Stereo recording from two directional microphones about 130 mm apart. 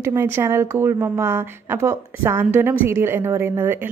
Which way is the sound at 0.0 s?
20° right (ahead or behind).